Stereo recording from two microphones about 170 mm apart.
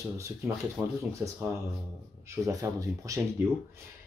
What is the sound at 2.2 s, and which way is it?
Speech, 20° right (ahead or behind).